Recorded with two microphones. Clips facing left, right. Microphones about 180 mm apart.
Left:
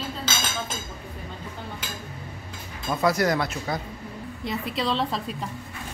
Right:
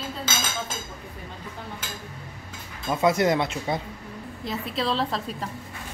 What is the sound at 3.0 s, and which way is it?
Speech, 25° right (ahead or behind).